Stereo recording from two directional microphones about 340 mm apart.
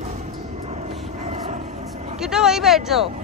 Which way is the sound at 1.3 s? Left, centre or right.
Centre.